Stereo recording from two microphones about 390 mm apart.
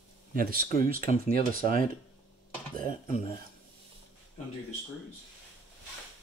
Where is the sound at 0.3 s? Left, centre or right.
Right.